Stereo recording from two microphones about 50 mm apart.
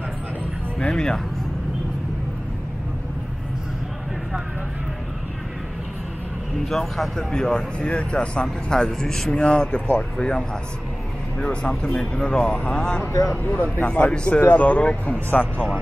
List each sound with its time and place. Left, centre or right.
0.7 s speech: centre
6.6 s speech: centre
13.1 s speech: left
13.5 s speech: left